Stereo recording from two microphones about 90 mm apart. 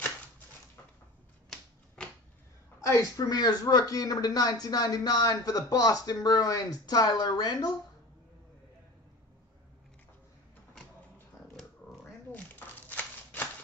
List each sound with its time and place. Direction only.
3.0 s speech: 45° left (ahead or behind)
12.0 s shuffling cards: 20° left (ahead or behind)